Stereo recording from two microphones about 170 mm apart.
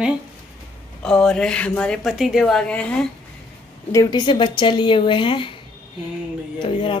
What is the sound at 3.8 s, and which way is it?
Speech, 20° left (ahead or behind).